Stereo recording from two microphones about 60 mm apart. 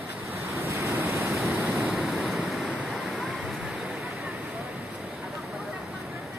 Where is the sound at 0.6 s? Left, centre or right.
Right.